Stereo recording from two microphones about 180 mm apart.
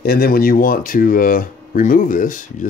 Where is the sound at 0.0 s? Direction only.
55° left (ahead or behind).